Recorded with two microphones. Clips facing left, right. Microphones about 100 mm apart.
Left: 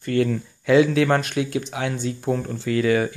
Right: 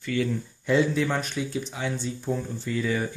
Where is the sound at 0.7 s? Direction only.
90° left; by 3.1 s 70° left (ahead or behind).